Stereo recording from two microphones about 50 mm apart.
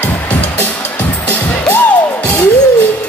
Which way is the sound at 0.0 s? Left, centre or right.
Left.